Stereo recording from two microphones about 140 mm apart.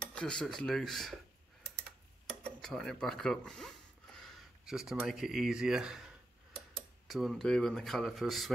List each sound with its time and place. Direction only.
0.1 s speech: 5° left (ahead or behind)
2.4 s speech: 5° left (ahead or behind)